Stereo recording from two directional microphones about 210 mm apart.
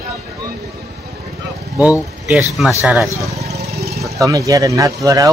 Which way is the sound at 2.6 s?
Centre (ahead or behind).